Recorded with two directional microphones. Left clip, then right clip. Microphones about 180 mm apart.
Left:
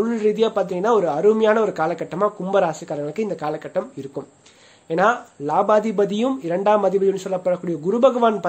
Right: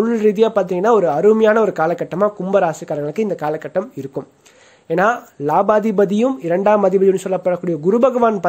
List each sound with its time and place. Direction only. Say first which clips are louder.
0.0 s a man's voice: right 5 dB; 45° right (ahead or behind)
4.8 s a man's voice: right 2 dB; 45° right (ahead or behind)